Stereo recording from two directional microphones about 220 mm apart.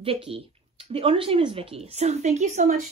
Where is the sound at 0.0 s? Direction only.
25° right (ahead or behind).